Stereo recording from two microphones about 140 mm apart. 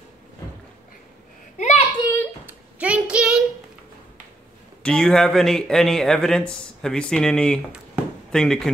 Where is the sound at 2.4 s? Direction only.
10° right (ahead or behind).